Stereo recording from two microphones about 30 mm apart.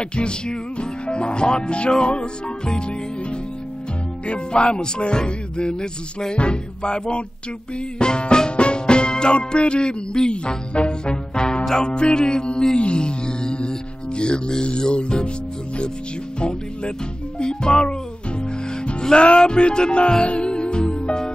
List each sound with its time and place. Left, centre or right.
0.0 s speech: left
4.3 s speech: left
8.0 s music: left
14.8 s speech: left
16.3 s speech: left
17.4 s music: left
19.1 s speech: left
20.2 s music: left